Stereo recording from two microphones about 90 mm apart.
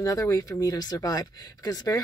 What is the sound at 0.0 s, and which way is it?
Speech, 40° left (ahead or behind).